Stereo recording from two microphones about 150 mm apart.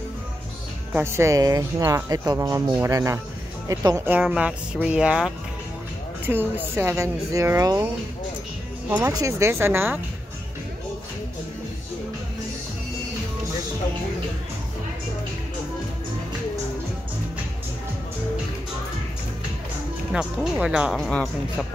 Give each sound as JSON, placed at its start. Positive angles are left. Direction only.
{"t": 0.9, "sound": "speech", "side_deg": -15}
{"t": 4.1, "sound": "speech", "side_deg": -5}
{"t": 8.8, "sound": "speech", "side_deg": -10}
{"t": 20.1, "sound": "speech", "side_deg": -5}